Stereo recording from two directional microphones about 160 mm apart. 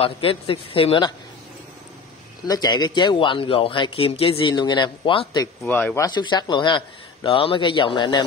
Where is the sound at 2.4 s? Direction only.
25° left (ahead or behind).